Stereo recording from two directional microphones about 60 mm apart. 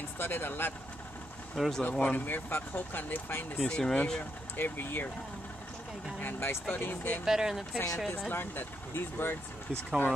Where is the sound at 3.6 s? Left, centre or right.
Centre.